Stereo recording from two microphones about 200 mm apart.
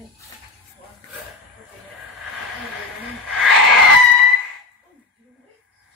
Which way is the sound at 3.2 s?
Centre (ahead or behind).